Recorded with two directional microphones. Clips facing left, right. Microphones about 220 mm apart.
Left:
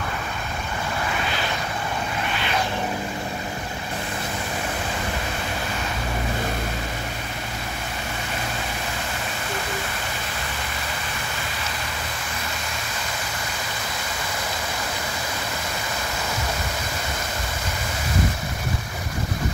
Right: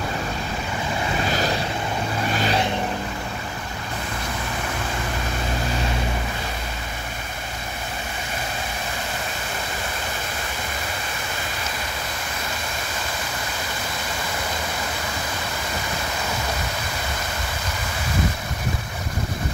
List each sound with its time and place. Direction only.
2.3 s vehicle: 40° right (ahead or behind)